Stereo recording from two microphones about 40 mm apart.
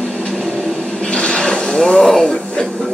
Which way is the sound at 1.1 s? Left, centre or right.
Left.